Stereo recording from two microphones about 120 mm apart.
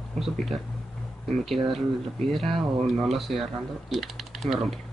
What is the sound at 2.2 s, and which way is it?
Speech, centre (ahead or behind).